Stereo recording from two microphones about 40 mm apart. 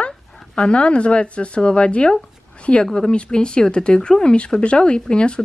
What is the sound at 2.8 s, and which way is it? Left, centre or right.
Speech, centre.